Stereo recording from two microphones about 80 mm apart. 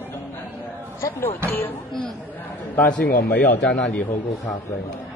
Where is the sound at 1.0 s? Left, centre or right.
Left.